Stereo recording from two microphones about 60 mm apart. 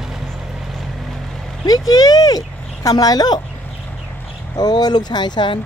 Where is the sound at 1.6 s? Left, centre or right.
Left.